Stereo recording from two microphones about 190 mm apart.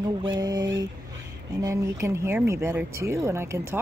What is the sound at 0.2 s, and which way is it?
Speech, 20° right (ahead or behind).